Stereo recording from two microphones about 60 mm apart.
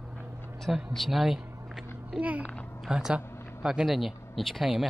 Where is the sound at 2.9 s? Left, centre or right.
Centre.